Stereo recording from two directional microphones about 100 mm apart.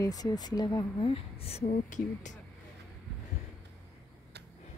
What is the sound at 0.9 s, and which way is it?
Speech, 65° left (ahead or behind).